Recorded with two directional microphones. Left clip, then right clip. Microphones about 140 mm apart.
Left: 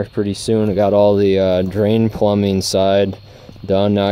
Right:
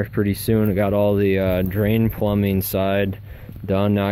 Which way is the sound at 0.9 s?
50° left (ahead or behind).